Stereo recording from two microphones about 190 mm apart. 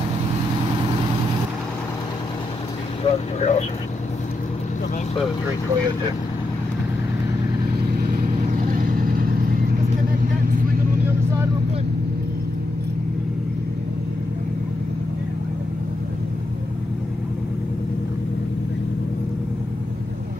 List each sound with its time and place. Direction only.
3.0 s vehicle: 35° left (ahead or behind)
9.0 s vehicle: 50° right (ahead or behind)